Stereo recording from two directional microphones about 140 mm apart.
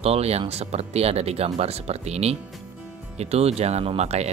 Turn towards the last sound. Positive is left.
turn(degrees=-50)  # may be behind; listen again after turning